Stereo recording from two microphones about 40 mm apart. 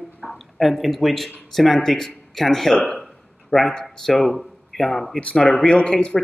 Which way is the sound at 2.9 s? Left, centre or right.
Centre.